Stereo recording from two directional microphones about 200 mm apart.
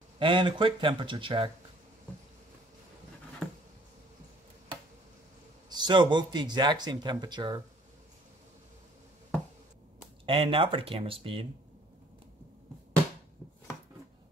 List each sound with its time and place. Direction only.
0.2 s speech: 25° right (ahead or behind)
5.7 s speech: 20° right (ahead or behind)
10.2 s speech: 25° right (ahead or behind)